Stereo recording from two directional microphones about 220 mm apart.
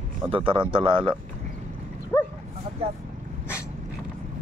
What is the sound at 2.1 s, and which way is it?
Dog, 10° left (ahead or behind).